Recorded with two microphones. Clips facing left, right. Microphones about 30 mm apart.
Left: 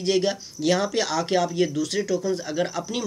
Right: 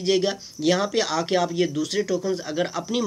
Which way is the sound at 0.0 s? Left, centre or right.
Centre.